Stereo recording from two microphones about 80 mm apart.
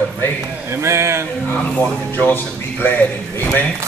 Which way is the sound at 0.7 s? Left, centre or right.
Right.